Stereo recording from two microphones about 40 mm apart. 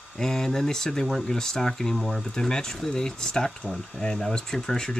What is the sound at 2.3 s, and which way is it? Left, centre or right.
Speech, centre.